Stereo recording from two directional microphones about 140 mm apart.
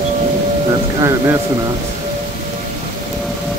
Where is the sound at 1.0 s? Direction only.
20° right (ahead or behind).